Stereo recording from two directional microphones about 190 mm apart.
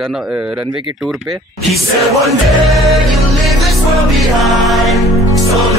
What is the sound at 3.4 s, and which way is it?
Music, centre (ahead or behind).